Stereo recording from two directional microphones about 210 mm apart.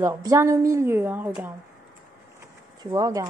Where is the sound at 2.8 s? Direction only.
20° right (ahead or behind).